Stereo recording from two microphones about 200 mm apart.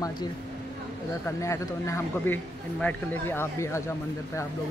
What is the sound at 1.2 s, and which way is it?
Speech, 15° left (ahead or behind).